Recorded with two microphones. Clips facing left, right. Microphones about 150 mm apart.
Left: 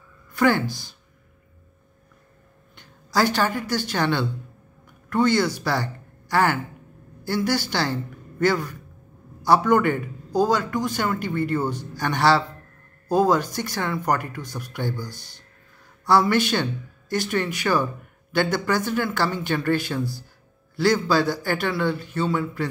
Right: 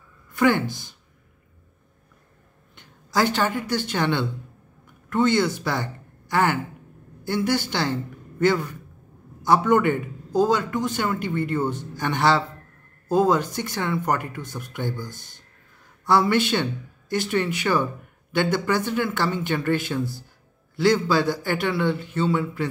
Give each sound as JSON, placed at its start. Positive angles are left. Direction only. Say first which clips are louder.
{"t": 0.3, "sound": "a man's voice", "louder": "even", "side_deg": -20}
{"t": 2.7, "sound": "a man's voice", "louder": "left 1 dB", "side_deg": -20}